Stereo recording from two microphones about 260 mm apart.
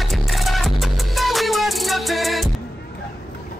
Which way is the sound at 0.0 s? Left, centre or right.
Centre.